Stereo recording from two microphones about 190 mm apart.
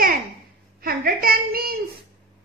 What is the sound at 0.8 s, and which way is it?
Speech, 50° right (ahead or behind).